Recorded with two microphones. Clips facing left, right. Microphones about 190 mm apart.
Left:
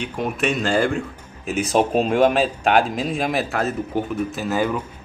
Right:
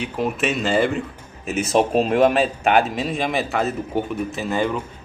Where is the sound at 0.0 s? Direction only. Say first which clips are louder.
Right 1 dB; centre (ahead or behind).